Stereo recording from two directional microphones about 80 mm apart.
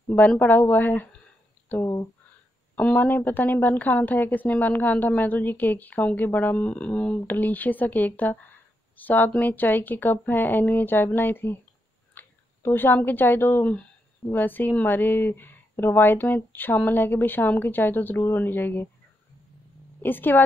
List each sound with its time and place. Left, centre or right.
0.4 s a woman's voice: left
20.0 s a woman's voice: left